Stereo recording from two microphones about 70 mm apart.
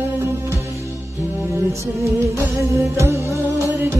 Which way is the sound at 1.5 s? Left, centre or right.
Right.